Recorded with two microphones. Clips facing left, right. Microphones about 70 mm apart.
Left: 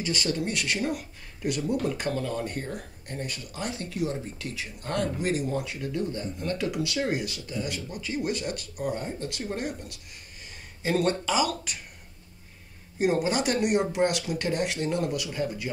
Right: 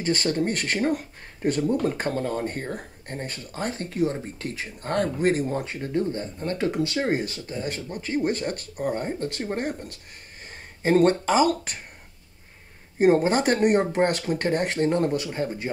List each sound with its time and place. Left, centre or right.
0.0 s speech: right
13.0 s speech: right